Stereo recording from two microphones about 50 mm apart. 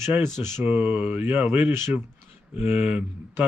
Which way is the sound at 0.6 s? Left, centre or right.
Right.